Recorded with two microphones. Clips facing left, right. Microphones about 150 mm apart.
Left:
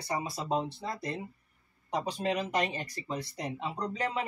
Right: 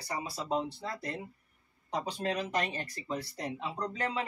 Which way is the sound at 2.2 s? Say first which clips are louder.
Left 2 dB; 15° left (ahead or behind).